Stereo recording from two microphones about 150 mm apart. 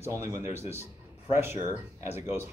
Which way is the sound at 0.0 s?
20° right (ahead or behind).